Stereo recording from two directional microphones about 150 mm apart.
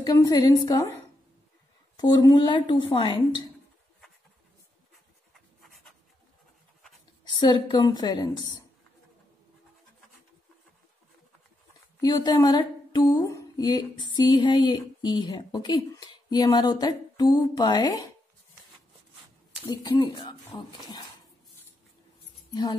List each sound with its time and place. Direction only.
0.0 s speech: 25° left (ahead or behind)
2.0 s a woman's voice: 25° left (ahead or behind)
7.2 s speech: 30° left (ahead or behind)
12.0 s speech: 25° left (ahead or behind)
19.7 s speech: 30° left (ahead or behind)
22.5 s speech: 25° left (ahead or behind)